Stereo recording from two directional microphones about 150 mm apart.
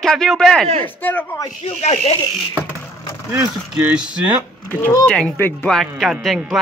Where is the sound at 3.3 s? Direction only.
15° right (ahead or behind).